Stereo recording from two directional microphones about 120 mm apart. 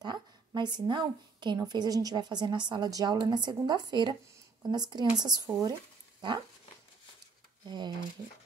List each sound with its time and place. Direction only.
0.0 s a woman's voice: 35° right (ahead or behind)
7.6 s a woman's voice: 35° right (ahead or behind)